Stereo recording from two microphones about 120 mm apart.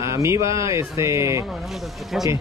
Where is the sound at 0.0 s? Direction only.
25° right (ahead or behind).